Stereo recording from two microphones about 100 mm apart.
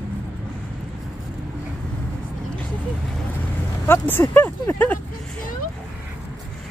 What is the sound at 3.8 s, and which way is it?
Vehicle, 20° left (ahead or behind).